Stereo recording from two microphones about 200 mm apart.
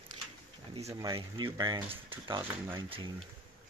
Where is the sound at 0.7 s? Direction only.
25° right (ahead or behind).